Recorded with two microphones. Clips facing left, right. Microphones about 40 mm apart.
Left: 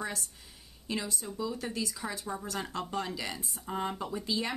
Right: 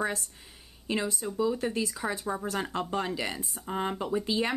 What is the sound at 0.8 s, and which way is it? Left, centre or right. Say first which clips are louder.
A woman's voice: right 5 dB; right.